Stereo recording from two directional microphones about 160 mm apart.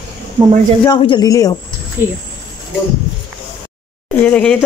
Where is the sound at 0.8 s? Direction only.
30° left (ahead or behind).